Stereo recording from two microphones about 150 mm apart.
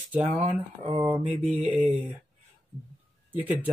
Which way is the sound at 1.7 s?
5° right (ahead or behind).